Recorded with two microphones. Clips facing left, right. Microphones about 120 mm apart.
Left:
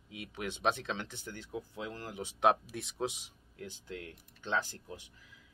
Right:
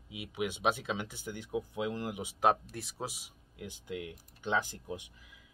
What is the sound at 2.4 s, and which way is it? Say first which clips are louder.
Speech: even; centre (ahead or behind).